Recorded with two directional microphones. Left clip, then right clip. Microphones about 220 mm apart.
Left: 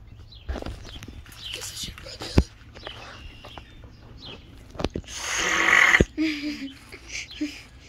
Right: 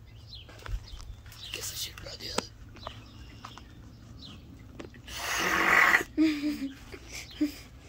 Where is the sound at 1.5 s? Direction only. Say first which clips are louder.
Left 1 dB; 35° right (ahead or behind).